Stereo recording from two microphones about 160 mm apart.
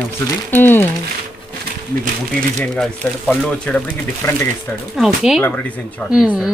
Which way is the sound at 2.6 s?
5° left (ahead or behind).